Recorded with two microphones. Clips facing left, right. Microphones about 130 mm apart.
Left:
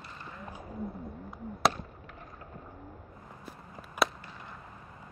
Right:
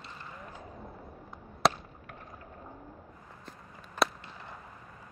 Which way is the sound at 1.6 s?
Centre (ahead or behind).